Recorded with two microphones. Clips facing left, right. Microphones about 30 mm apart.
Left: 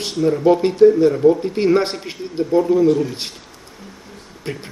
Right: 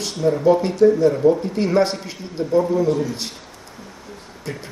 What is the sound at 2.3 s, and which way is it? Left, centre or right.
Speech, centre.